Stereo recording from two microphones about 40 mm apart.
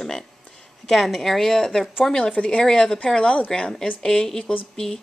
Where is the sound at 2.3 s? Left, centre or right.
Left.